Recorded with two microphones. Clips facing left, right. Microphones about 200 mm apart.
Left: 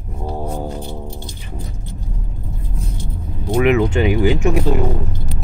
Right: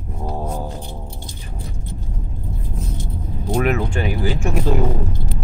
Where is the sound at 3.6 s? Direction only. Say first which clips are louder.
Left 6 dB; 20° left (ahead or behind).